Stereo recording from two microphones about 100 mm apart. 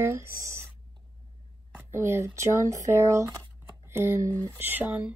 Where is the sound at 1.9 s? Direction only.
25° right (ahead or behind).